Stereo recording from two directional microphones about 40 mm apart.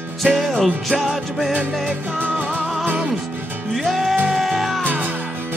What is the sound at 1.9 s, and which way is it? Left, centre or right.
Music, right.